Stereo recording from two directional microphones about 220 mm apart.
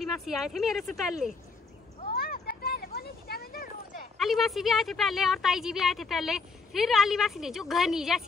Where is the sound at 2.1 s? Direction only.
45° left (ahead or behind).